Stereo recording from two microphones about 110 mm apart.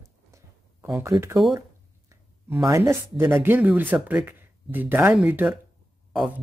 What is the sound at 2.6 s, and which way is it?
Speech, 25° right (ahead or behind).